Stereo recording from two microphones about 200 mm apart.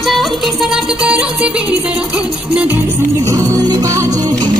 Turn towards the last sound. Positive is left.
turn(degrees=-20)  # may be behind; listen again after turning